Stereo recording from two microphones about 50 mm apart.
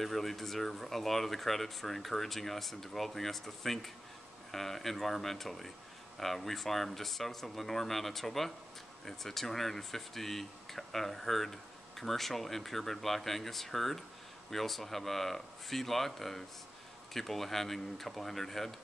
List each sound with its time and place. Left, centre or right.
0.0 s speech: centre